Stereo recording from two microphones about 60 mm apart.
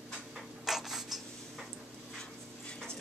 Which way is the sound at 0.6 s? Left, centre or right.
Centre.